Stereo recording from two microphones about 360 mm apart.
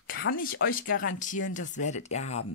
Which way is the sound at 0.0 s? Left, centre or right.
Left.